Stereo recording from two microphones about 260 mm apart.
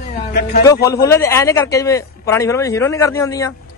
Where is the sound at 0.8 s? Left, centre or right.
Centre.